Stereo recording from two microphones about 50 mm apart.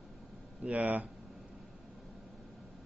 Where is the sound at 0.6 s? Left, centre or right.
Right.